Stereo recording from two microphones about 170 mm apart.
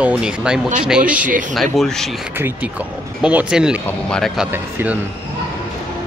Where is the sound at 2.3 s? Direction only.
10° right (ahead or behind).